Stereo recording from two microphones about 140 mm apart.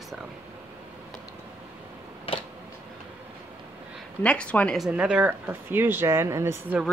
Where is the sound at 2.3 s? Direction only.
40° left (ahead or behind).